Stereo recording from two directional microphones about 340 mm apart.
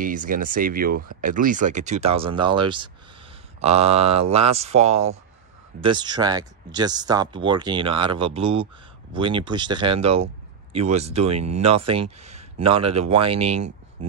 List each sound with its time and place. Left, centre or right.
0.0 s speech: right